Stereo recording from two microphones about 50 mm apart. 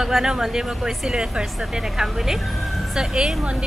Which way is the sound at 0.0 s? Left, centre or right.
Centre.